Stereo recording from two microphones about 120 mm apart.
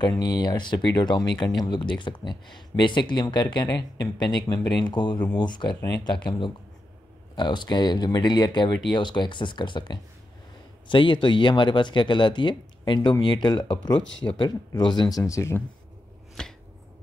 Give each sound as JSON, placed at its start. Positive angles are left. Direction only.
{"t": 0.0, "sound": "speech", "side_deg": 35}
{"t": 7.3, "sound": "speech", "side_deg": 40}
{"t": 16.4, "sound": "chopping", "side_deg": 5}